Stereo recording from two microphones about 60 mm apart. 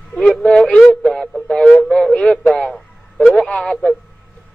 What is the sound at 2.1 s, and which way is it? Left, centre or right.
Speech, centre.